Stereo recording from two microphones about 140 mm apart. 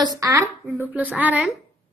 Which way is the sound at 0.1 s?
25° right (ahead or behind).